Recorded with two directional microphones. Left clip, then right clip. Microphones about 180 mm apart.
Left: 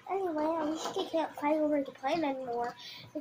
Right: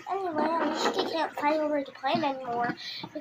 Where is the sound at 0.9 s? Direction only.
15° left (ahead or behind).